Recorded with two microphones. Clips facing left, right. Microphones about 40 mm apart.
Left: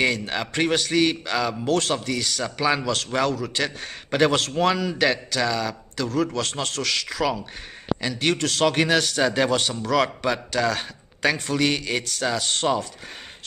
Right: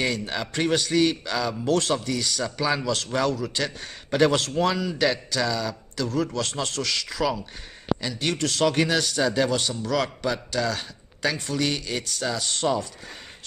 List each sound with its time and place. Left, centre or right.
0.0 s a man's voice: left
1.7 s speech: left
2.4 s a man's voice: left
3.5 s a man's voice: left
4.7 s a man's voice: left
6.3 s a man's voice: left
6.6 s a man's voice: left